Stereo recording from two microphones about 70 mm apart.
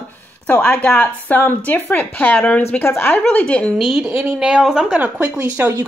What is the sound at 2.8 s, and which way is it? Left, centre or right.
Speech, left.